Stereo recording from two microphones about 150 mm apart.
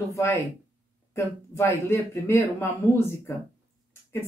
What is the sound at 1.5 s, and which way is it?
Speech, 15° left (ahead or behind).